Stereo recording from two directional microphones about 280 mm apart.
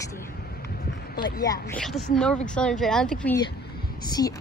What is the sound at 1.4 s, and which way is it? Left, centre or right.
Speech, centre.